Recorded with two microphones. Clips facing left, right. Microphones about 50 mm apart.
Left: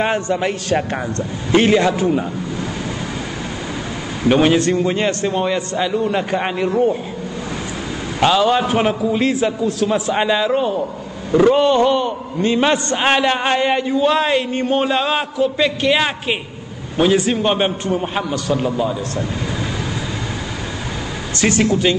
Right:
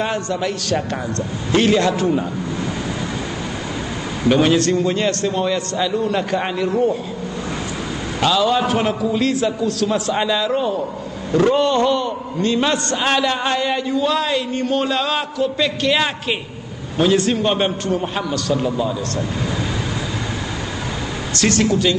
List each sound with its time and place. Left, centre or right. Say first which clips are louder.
0.0 s a man's voice: left 3 dB; left
4.3 s a man's voice: left 1 dB; centre
8.2 s a man's voice: left 2 dB; left
21.4 s a man's voice: left 1 dB; centre